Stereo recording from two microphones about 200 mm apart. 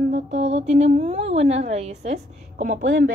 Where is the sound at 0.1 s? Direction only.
35° right (ahead or behind).